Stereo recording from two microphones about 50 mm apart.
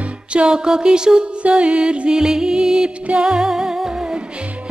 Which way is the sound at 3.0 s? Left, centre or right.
Right.